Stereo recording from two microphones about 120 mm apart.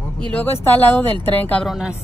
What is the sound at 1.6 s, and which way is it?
Speech, 5° right (ahead or behind).